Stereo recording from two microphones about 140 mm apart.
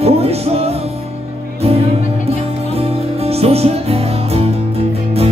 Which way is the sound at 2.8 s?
45° right (ahead or behind).